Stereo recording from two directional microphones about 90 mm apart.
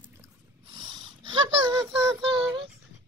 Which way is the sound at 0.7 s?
60° right (ahead or behind).